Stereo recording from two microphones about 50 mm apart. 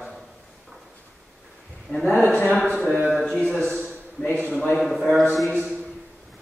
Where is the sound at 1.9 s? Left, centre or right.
Left.